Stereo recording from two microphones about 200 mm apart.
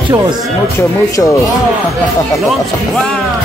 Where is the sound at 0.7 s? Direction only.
15° left (ahead or behind).